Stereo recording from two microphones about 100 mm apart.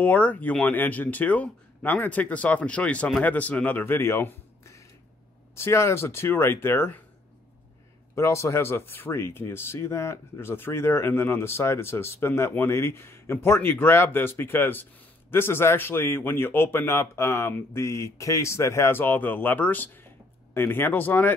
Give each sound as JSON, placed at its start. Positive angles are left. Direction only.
{"t": 0.0, "sound": "speech", "side_deg": 15}
{"t": 5.6, "sound": "speech", "side_deg": 25}
{"t": 8.1, "sound": "speech", "side_deg": 30}